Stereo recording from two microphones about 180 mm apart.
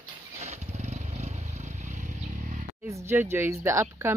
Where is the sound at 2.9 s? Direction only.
15° right (ahead or behind).